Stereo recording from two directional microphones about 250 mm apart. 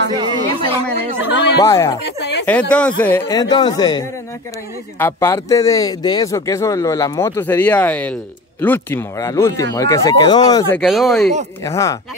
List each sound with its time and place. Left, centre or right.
0.1 s a sound: centre
1.3 s speech: left
1.6 s speech: centre
2.0 s a sound: left
2.4 s speech: centre
10.8 s speech: centre
11.6 s speech: centre